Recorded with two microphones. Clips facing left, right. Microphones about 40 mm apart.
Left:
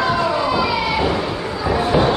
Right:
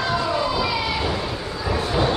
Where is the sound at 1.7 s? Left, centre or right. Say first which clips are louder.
Left 5 dB; left.